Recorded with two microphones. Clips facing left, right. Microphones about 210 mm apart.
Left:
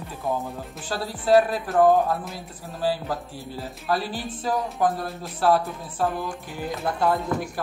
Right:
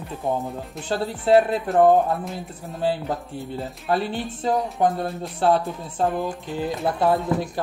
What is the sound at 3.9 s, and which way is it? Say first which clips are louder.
Speech: right 3 dB; 25° right (ahead or behind).